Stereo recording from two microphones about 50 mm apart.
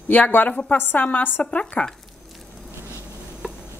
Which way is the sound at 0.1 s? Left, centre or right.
Left.